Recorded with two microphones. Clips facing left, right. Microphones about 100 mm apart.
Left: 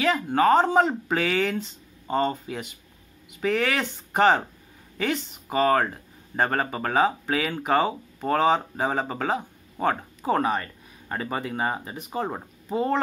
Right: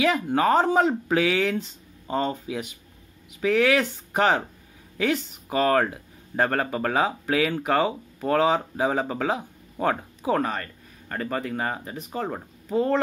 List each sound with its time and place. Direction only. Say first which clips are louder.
0.0 s speech: even; 10° right (ahead or behind)
10.3 s speech: left 2 dB; 20° left (ahead or behind)